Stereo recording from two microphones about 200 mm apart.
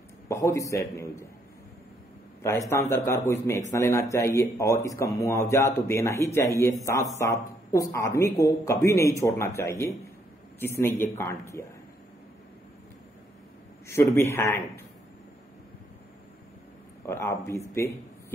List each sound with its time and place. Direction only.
0.3 s speech: 15° left (ahead or behind)
2.7 s speech: 15° left (ahead or behind)
13.8 s speech: 15° left (ahead or behind)
17.0 s speech: 15° left (ahead or behind)